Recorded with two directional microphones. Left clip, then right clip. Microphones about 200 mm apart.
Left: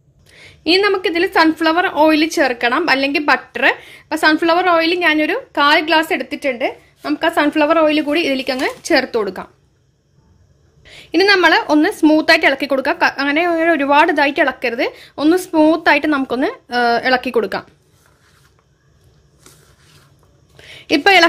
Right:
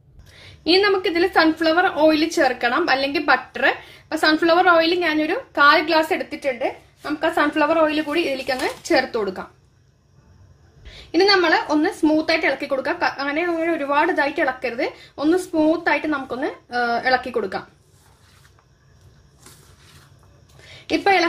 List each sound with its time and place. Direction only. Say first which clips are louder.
0.3 s a woman's voice: left 3 dB; 30° left (ahead or behind)
10.8 s a woman's voice: left 3 dB; 40° left (ahead or behind)
20.6 s a sound: left 6 dB; 40° left (ahead or behind)